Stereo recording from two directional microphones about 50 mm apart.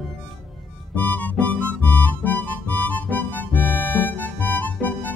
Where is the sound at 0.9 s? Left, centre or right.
Left.